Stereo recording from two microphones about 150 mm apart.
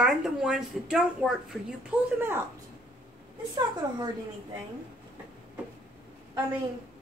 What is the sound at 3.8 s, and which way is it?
Speech, 25° right (ahead or behind).